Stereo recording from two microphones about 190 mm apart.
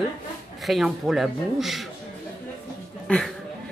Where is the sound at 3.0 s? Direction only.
Centre (ahead or behind).